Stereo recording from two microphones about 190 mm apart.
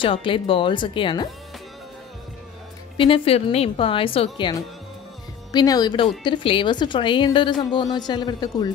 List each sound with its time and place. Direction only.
0.0 s a woman's voice: 25° left (ahead or behind)
3.0 s a woman's voice: 30° left (ahead or behind)